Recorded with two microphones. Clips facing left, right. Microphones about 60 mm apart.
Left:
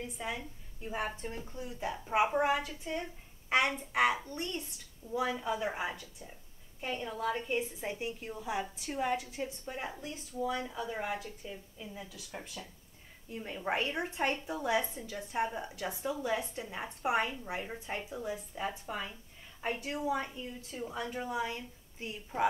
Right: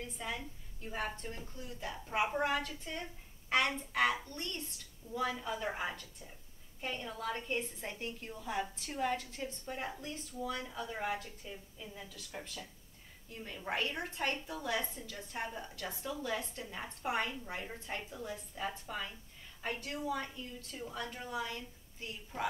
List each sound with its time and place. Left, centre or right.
0.0 s a woman's voice: centre
13.3 s a woman's voice: left